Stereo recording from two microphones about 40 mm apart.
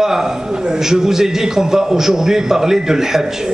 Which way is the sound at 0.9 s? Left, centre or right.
Centre.